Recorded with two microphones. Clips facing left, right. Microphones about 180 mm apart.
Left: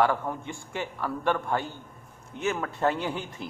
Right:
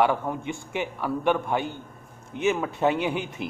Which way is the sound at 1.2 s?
20° right (ahead or behind).